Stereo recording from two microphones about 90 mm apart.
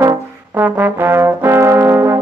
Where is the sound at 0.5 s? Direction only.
20° right (ahead or behind).